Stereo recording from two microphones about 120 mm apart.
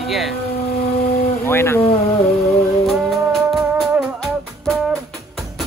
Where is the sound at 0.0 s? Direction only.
Centre (ahead or behind).